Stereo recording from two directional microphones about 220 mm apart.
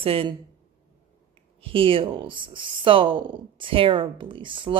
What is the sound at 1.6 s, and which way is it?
Speech, 25° right (ahead or behind).